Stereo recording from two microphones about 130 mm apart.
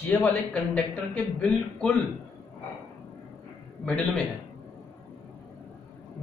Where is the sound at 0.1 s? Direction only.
15° left (ahead or behind).